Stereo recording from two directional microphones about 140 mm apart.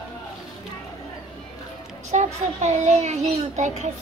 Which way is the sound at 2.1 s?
55° right (ahead or behind).